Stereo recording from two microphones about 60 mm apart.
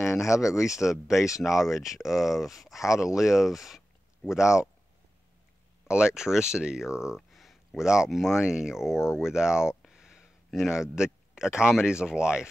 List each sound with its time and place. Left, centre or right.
0.0 s speech: left
0.7 s speech: centre
5.9 s speech: centre
6.9 s speech: left
7.2 s a sound: centre
7.7 s speech: centre
8.9 s speech: left
9.2 s speech: centre